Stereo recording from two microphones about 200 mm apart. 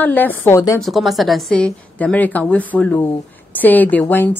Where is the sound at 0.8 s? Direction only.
Centre (ahead or behind).